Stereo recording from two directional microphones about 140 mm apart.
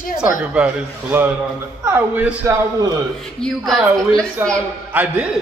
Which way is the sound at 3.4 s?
Centre (ahead or behind).